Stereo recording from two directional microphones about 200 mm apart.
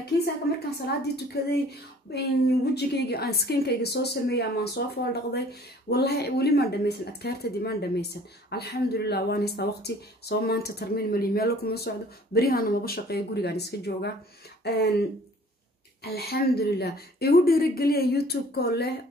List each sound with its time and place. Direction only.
0.7 s a woman's voice: 55° left (ahead or behind)